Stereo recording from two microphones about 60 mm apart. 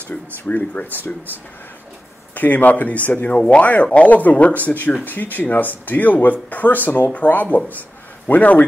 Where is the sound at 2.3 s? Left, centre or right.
Left.